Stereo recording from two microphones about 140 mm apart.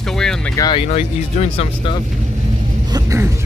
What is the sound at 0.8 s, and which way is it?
Speech, 50° left (ahead or behind).